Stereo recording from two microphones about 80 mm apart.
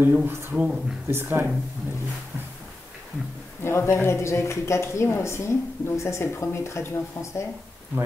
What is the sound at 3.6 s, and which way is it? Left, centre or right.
Speech, left.